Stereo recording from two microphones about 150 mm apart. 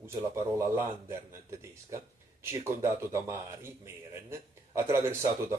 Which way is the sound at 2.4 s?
20° right (ahead or behind).